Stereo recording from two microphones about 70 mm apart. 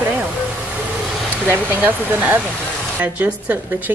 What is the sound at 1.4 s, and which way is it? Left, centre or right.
A woman's voice, right.